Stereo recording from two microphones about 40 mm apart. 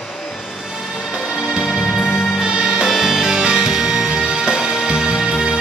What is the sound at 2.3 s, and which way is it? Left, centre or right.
Music, right.